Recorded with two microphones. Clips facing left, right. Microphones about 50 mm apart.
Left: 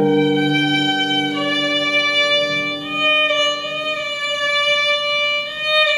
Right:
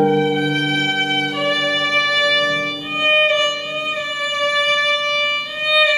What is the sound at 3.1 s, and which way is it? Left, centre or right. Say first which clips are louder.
Violin: right 2 dB; centre.